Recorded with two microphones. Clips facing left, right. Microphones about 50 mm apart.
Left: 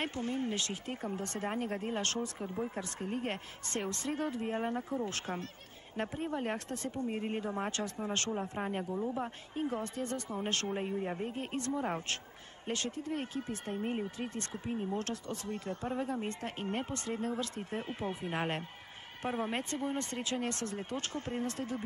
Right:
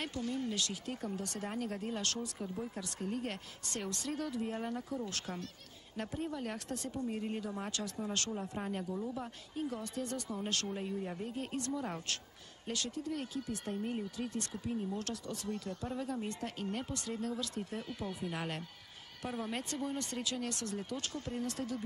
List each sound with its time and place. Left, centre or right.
0.0 s speech: left